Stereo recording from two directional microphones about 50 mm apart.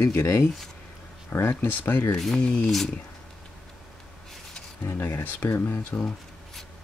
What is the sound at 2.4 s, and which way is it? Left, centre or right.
Speech, left.